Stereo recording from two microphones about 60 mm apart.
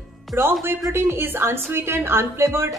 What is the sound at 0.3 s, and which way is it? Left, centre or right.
A woman's voice, right.